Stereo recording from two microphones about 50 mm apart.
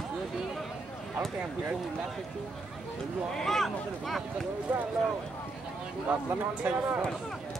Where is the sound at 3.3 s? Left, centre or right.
Centre.